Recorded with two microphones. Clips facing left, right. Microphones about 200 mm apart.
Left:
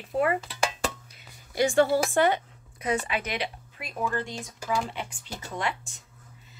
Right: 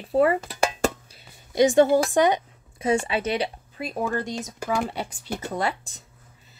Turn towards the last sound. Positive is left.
turn(degrees=-35)  # may be behind; listen again after turning